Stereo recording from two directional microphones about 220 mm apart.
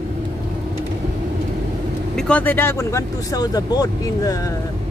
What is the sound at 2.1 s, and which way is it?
Speech, 5° left (ahead or behind).